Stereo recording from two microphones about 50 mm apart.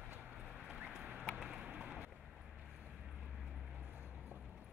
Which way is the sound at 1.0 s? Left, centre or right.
Right.